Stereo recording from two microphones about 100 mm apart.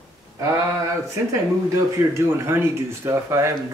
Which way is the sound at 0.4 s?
30° right (ahead or behind).